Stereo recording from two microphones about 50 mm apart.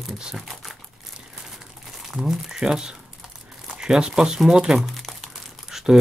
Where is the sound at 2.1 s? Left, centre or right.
Centre.